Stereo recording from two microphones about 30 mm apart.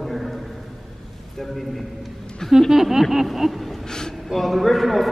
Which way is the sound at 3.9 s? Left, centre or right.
Left.